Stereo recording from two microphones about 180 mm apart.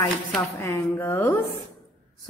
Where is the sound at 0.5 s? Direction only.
15° left (ahead or behind).